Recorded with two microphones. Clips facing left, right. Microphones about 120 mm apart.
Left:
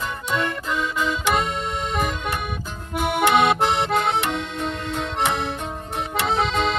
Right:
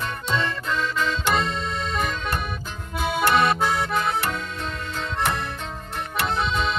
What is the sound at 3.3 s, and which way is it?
Accordion, 65° left (ahead or behind).